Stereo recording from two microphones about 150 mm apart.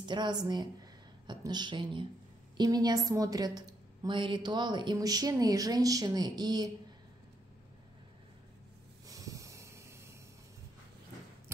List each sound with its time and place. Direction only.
0.0 s a woman's voice: 30° right (ahead or behind)
9.0 s snort: 25° right (ahead or behind)